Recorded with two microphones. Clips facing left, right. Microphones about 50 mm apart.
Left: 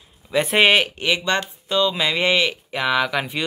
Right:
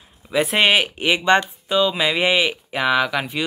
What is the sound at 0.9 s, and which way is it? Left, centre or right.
Speech, centre.